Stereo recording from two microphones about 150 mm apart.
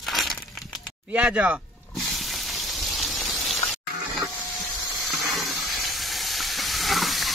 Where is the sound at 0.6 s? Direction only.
5° left (ahead or behind).